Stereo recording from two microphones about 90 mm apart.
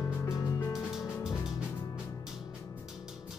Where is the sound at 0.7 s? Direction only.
5° right (ahead or behind).